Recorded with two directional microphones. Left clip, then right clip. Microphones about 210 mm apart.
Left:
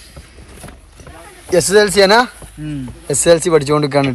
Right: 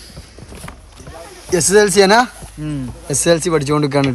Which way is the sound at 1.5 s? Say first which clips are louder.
Left 1 dB; 10° right (ahead or behind).